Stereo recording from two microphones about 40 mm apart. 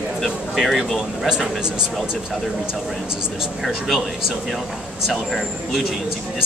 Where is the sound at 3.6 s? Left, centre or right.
Centre.